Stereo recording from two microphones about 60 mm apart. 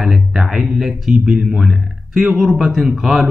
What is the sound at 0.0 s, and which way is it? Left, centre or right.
Speech, centre.